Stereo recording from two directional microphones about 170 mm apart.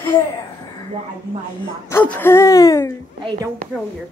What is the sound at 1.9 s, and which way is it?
Speech, 10° left (ahead or behind).